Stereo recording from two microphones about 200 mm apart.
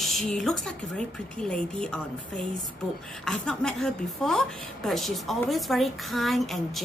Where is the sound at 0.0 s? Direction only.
Centre (ahead or behind).